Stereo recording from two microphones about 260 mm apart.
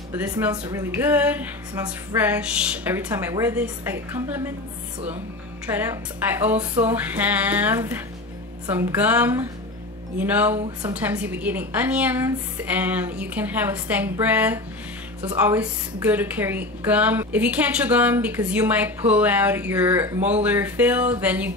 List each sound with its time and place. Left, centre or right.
0.1 s a woman's voice: centre
5.7 s a woman's voice: centre
10.6 s a woman's voice: right
11.0 s a woman's voice: centre